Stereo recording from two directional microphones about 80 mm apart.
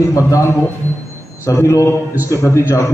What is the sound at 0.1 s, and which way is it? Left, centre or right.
A man's voice, left.